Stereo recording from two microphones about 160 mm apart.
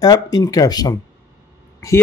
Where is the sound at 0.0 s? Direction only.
25° left (ahead or behind).